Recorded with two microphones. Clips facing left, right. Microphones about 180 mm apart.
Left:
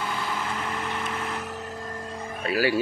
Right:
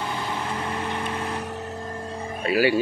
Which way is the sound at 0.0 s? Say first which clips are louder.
Right 1 dB; 30° right (ahead or behind).